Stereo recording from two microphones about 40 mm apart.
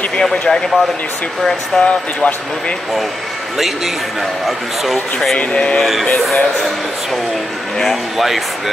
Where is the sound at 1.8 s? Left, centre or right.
Left.